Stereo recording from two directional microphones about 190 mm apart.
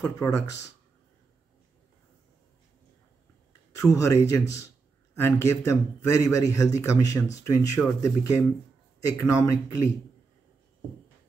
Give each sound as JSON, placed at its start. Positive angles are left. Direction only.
{"t": 0.0, "sound": "a man's voice", "side_deg": 15}
{"t": 3.7, "sound": "a man's voice", "side_deg": 15}